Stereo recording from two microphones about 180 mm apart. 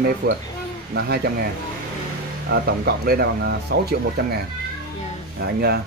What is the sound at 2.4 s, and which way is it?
Speech, 60° right (ahead or behind).